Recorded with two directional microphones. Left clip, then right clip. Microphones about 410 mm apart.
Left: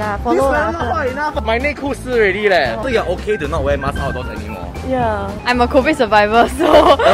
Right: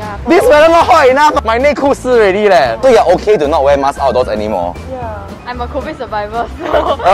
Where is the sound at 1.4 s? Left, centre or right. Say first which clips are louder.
Right 8 dB; right.